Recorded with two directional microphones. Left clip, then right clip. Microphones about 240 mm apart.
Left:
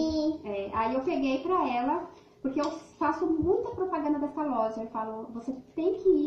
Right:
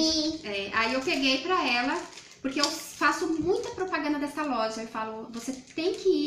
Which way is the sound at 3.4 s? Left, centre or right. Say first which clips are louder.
Even; right.